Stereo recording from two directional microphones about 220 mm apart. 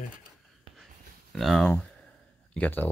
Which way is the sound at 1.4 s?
Centre (ahead or behind).